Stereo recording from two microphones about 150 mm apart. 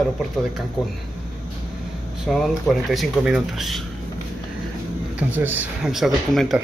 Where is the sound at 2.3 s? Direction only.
Centre (ahead or behind).